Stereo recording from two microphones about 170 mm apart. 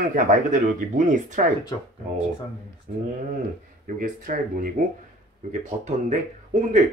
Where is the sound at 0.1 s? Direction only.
50° right (ahead or behind).